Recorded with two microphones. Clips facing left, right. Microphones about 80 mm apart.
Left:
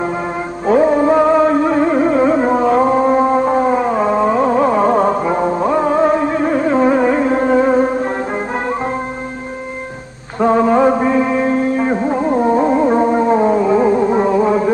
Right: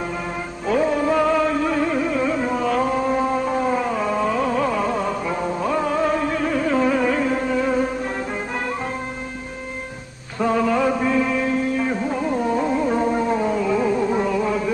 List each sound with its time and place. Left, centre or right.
0.7 s music: left
10.4 s music: left